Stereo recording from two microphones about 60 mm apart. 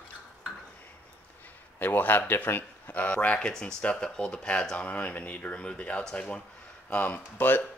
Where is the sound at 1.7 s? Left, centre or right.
Left.